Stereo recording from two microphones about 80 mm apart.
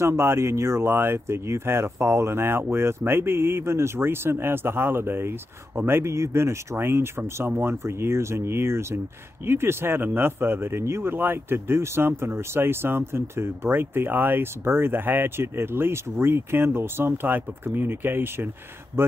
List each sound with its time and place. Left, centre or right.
0.0 s speech: right